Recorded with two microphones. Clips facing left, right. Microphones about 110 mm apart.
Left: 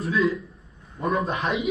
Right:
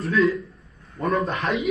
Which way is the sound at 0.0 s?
5° left (ahead or behind).